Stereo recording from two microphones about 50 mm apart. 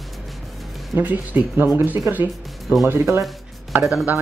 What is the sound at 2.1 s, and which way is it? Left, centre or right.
Speech, right.